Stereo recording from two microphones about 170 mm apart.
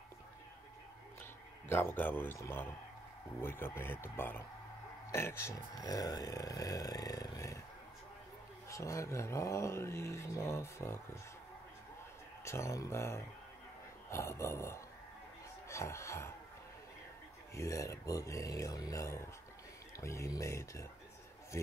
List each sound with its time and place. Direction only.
1.7 s speech: 15° left (ahead or behind)
8.6 s speech: 20° left (ahead or behind)
12.4 s speech: 15° left (ahead or behind)
17.6 s speech: 20° left (ahead or behind)